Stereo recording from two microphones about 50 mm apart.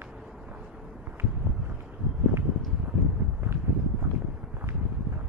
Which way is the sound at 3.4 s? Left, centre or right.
Right.